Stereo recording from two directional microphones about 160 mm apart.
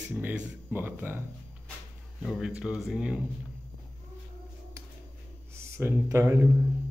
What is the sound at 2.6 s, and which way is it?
Speech, 5° right (ahead or behind).